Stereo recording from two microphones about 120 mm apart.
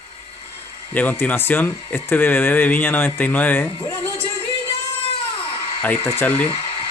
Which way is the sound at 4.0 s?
50° left (ahead or behind).